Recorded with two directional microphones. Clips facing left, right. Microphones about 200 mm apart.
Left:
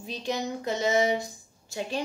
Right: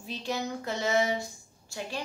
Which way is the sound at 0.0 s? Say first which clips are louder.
Left 2 dB; 20° left (ahead or behind).